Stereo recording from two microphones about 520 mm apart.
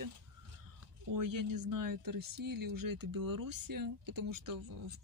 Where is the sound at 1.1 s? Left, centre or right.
Right.